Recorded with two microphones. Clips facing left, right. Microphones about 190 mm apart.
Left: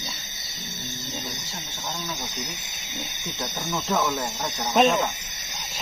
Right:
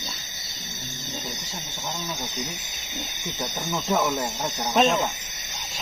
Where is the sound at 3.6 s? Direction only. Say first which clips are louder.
Right 1 dB; 20° right (ahead or behind).